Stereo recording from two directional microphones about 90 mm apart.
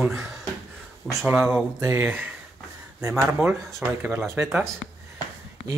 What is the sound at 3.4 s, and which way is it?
Speech, 20° right (ahead or behind).